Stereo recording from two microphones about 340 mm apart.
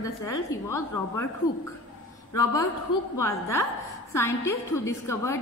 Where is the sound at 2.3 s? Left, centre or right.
Centre.